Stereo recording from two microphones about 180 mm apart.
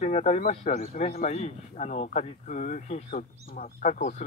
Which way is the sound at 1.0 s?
35° left (ahead or behind).